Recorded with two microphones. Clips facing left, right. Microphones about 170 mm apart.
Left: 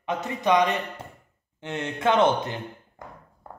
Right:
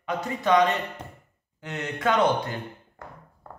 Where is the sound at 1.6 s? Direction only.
25° left (ahead or behind).